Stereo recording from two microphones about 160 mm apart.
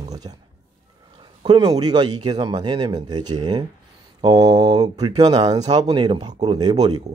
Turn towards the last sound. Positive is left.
turn(degrees=-25)  # may be behind; listen again after turning